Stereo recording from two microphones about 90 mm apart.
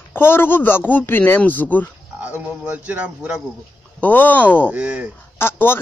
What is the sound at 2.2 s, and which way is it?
Speech, 15° right (ahead or behind).